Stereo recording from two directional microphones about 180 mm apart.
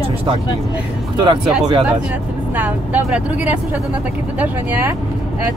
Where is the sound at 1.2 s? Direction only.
25° right (ahead or behind).